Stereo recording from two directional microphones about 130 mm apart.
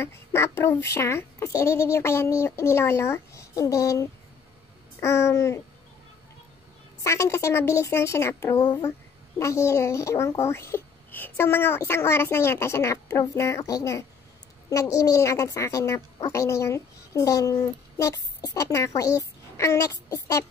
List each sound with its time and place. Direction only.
0.0 s a woman's voice: 20° left (ahead or behind)
7.0 s a woman's voice: 20° left (ahead or behind)